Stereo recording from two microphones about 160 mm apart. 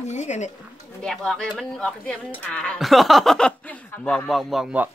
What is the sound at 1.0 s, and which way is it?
Speech, 5° left (ahead or behind).